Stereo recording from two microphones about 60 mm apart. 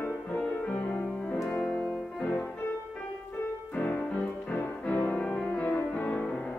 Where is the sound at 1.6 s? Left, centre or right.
Centre.